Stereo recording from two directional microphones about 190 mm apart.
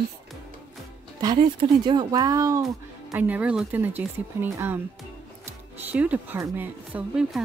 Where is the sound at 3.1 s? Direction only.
10° right (ahead or behind).